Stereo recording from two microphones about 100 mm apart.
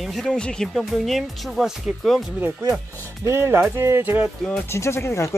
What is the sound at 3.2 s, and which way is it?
Speech, 25° right (ahead or behind).